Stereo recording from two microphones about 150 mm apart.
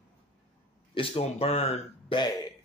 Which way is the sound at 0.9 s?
35° left (ahead or behind).